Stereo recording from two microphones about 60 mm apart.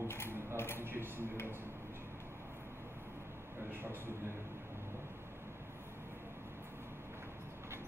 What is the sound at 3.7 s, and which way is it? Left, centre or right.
Speech, right.